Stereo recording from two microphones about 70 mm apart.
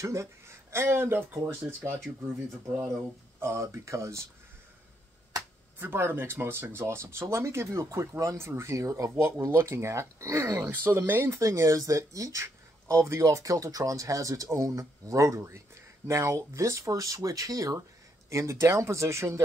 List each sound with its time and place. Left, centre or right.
0.0 s speech: right
3.3 s speech: right
5.8 s speech: right
9.5 s speech: right
11.3 s speech: right
18.3 s speech: right